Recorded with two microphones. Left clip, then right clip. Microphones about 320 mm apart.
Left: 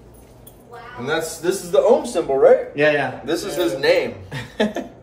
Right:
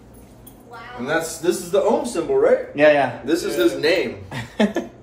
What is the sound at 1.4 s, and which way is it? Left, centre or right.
Speech, centre.